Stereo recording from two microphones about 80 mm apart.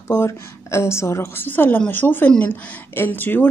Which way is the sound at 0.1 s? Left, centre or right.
Left.